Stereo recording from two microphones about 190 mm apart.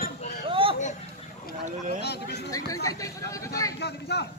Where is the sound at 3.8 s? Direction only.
60° left (ahead or behind).